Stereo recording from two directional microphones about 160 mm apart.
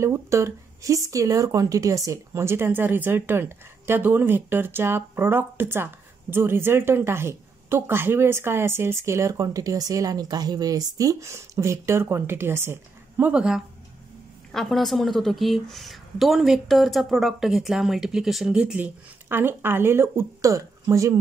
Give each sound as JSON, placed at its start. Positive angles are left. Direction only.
{"t": 0.0, "sound": "a woman's voice", "side_deg": -20}